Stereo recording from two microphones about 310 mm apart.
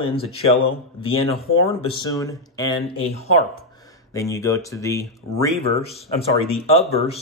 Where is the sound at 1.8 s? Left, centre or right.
Centre.